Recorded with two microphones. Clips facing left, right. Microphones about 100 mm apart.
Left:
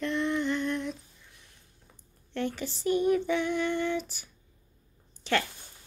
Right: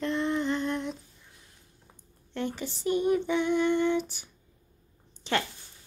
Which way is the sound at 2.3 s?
20° right (ahead or behind).